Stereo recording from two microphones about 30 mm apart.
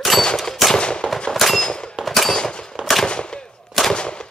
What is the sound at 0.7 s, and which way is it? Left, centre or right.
Gunshot, left.